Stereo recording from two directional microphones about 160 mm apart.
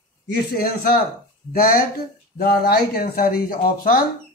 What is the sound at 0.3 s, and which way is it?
Speech, 70° left (ahead or behind).